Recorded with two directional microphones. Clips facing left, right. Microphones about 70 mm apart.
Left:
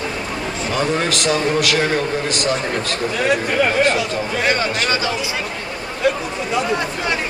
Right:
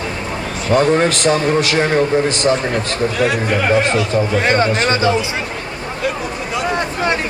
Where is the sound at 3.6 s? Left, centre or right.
Right.